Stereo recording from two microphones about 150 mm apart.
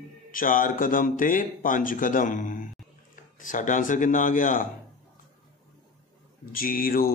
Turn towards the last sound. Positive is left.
turn(degrees=75)  # may be behind; listen again after turning